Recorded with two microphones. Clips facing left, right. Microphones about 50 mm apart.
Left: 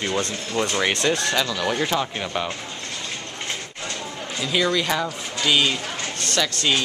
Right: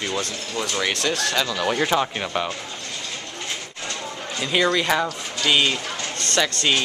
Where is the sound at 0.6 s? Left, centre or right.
Left.